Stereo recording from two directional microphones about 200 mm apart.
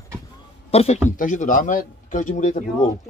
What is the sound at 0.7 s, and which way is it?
A man's voice, 30° left (ahead or behind).